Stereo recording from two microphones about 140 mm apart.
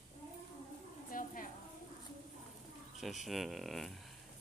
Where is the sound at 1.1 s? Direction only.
75° left (ahead or behind).